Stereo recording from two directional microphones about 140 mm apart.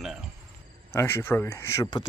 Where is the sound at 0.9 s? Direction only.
15° left (ahead or behind).